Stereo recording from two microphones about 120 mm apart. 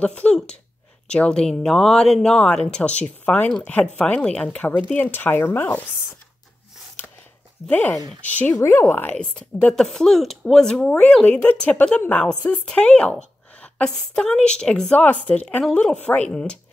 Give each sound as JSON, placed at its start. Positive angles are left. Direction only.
{"t": 0.0, "sound": "speech", "side_deg": 10}
{"t": 7.0, "sound": "a sound", "side_deg": 15}
{"t": 7.6, "sound": "a woman's voice", "side_deg": 15}